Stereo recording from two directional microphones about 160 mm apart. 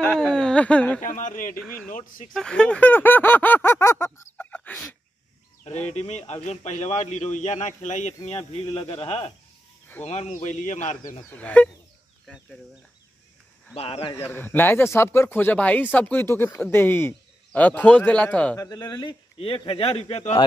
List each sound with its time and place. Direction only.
0.0 s speech: 5° left (ahead or behind)
1.0 s speech: 55° left (ahead or behind)
2.3 s speech: 5° left (ahead or behind)
5.9 s a man's voice: 45° left (ahead or behind)
11.2 s speech: 10° left (ahead or behind)
13.7 s a man's voice: 35° left (ahead or behind)
14.1 s speech: 15° left (ahead or behind)
18.6 s a man's voice: 25° left (ahead or behind)